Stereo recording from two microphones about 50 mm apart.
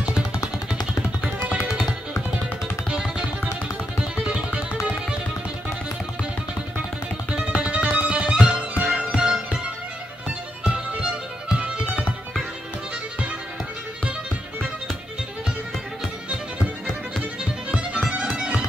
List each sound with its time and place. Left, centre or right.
2.9 s music: centre
7.2 s music: centre
11.0 s music: centre
17.6 s music: centre